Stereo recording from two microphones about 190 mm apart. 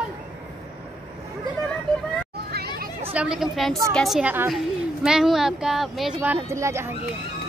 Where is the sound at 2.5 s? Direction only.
55° right (ahead or behind).